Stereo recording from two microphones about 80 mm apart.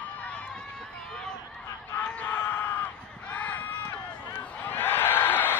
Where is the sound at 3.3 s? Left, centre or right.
Centre.